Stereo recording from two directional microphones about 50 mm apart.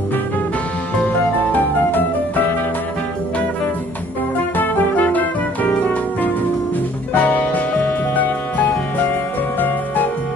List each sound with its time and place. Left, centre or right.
1.0 s music: left
4.6 s music: left
7.2 s music: left